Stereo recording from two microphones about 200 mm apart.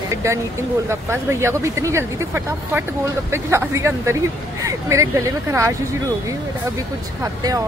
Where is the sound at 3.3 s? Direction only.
15° right (ahead or behind).